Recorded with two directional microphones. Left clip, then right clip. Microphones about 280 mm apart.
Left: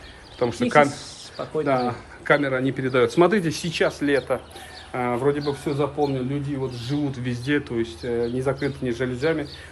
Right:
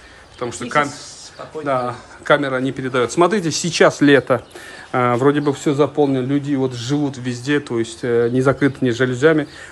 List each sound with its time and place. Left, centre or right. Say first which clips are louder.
0.4 s a man's voice: left 1 dB; centre; by 7.0 s right
7.1 s speech: right 5 dB; centre; by 9.5 s right